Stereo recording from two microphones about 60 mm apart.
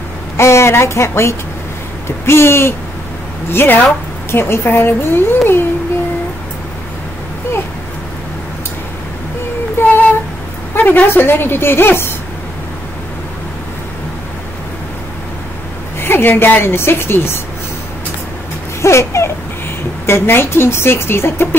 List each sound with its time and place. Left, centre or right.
0.4 s a woman's voice: left
9.8 s a sound: left
10.7 s a woman's voice: left
16.0 s a woman's voice: left
18.8 s a sound: left
20.1 s speech: left